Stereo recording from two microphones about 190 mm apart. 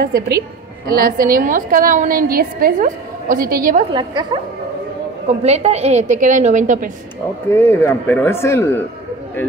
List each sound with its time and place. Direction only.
0.0 s a woman's voice: 50° right (ahead or behind)
3.9 s a woman's voice: 25° right (ahead or behind)
5.4 s a woman's voice: 35° right (ahead or behind)
7.4 s speech: 15° left (ahead or behind)